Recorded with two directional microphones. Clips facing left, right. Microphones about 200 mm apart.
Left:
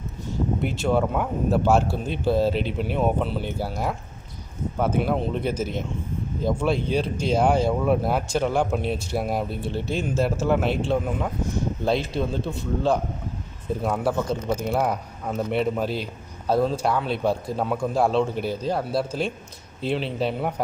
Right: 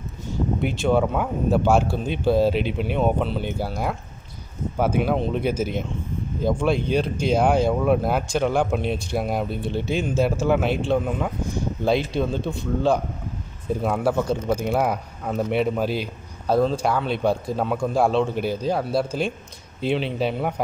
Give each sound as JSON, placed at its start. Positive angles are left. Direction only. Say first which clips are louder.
{"t": 0.6, "sound": "speech", "louder": "right 3 dB", "side_deg": 0}